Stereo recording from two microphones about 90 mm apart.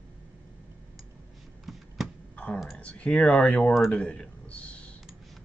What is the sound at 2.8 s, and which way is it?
Speech, 15° left (ahead or behind).